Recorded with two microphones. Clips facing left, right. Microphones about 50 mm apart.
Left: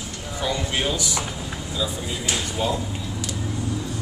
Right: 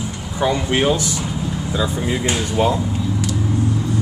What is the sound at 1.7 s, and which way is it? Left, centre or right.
Speech, right.